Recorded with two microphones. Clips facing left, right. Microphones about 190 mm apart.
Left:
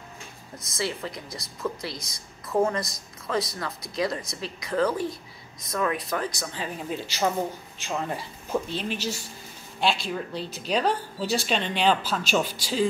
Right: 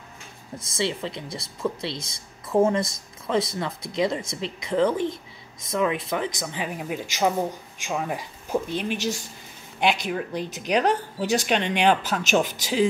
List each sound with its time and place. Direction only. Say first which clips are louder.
0.7 s a woman's voice: right 3 dB; 25° right (ahead or behind)